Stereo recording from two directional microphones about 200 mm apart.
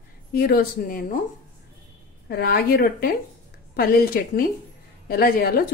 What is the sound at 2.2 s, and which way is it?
A woman's voice, 55° left (ahead or behind).